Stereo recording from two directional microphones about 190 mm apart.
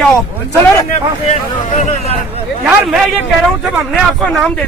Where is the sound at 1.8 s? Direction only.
35° left (ahead or behind).